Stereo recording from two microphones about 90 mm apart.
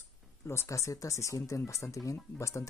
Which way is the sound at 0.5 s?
30° left (ahead or behind).